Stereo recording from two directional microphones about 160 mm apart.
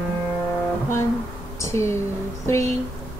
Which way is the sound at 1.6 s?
15° left (ahead or behind).